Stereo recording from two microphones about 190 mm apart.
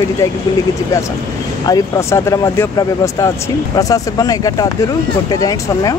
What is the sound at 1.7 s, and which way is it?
Speech, 15° left (ahead or behind).